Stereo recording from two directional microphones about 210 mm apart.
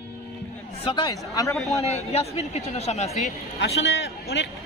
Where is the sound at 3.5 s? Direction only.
55° left (ahead or behind).